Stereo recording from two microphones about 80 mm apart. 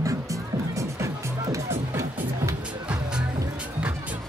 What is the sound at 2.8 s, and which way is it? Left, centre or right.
Music, centre.